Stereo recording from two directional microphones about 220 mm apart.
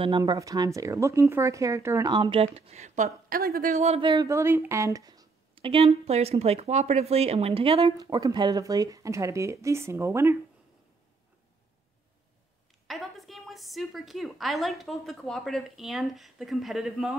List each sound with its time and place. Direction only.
0.0 s a woman's voice: 20° right (ahead or behind); by 3.7 s 40° right (ahead or behind)
3.7 s speech: 30° right (ahead or behind)
4.1 s a woman's voice: 15° right (ahead or behind)
12.8 s a woman's voice: centre (ahead or behind)